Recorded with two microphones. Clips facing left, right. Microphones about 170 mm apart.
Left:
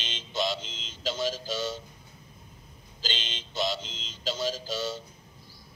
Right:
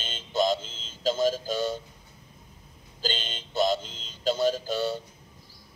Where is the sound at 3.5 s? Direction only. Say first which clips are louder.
Right 6 dB; 50° right (ahead or behind).